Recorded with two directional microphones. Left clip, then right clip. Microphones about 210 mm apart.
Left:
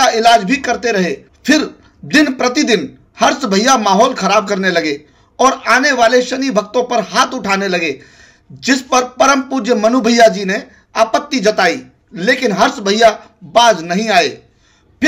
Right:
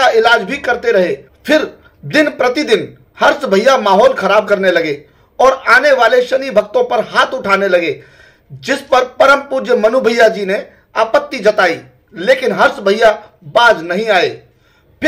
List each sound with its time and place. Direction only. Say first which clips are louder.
0.0 s speech: even; 40° left (ahead or behind)